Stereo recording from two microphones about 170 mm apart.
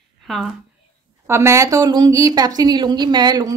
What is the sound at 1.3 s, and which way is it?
Speech, 15° right (ahead or behind).